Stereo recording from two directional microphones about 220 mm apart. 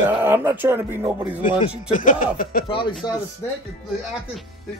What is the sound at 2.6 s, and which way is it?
Speech, 20° left (ahead or behind).